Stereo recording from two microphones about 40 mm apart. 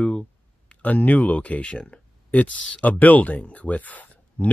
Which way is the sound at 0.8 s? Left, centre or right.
Left.